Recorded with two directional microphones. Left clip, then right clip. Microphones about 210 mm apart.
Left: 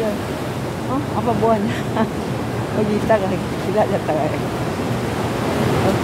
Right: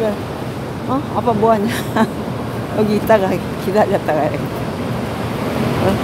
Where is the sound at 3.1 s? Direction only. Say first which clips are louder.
Right 4 dB; 50° right (ahead or behind).